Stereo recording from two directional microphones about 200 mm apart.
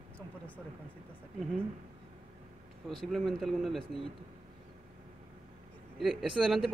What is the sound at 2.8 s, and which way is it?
Speech, centre (ahead or behind).